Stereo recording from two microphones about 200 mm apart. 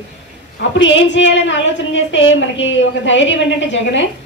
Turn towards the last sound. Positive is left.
turn(degrees=65)  # may be behind; listen again after turning